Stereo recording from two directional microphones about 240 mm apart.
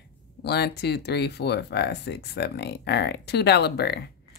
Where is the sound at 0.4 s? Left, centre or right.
Left.